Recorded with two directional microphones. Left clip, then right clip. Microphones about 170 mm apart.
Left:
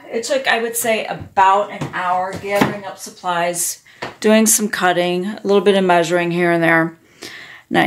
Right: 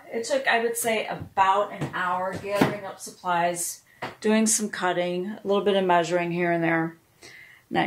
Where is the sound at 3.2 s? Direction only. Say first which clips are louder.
Left 5 dB; 60° left (ahead or behind).